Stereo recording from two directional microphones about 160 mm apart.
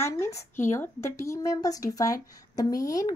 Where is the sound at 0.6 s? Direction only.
15° left (ahead or behind).